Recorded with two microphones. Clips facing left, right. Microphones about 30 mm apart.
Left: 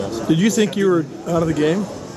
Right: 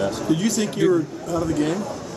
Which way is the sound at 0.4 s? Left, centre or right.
Left.